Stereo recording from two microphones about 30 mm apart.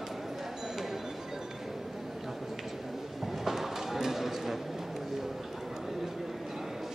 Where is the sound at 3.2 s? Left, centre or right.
Centre.